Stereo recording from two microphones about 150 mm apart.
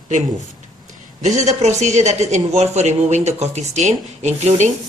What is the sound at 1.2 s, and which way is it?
Speech, 50° right (ahead or behind).